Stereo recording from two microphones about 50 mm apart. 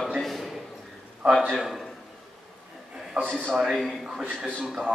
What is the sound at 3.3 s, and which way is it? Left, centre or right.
Speech, centre.